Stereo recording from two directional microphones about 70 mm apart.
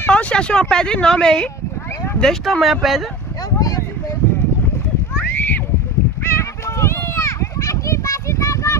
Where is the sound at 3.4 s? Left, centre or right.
Left.